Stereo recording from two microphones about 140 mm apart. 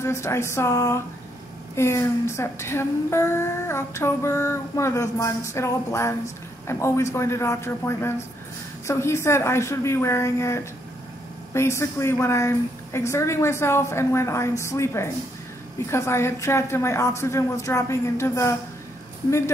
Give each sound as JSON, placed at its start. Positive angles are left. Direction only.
{"t": 0.0, "sound": "female singing", "side_deg": 20}